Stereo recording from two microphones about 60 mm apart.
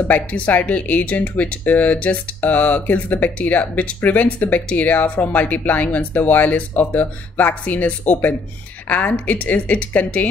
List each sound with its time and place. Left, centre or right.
0.1 s speech: left